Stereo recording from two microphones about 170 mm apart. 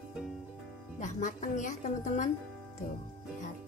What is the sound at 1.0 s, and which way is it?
Music, 50° left (ahead or behind).